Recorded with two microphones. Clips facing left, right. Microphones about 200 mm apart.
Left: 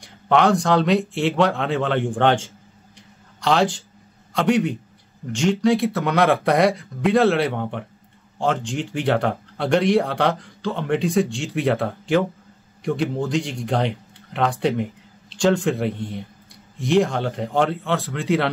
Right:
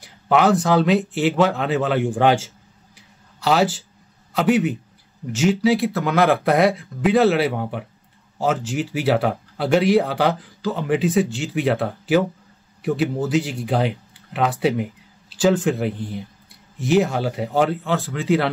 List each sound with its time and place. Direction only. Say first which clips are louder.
0.0 s a man's voice: even; 5° right (ahead or behind)